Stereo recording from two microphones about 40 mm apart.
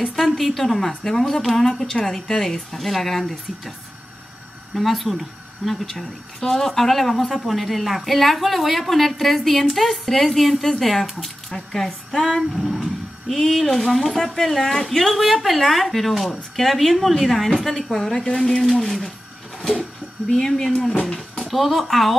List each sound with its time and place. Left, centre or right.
0.2 s a woman's voice: centre
4.7 s a woman's voice: centre
12.5 s a sound: centre
13.4 s speech: centre
18.0 s a woman's voice: centre
20.3 s a woman's voice: centre
21.2 s speech: centre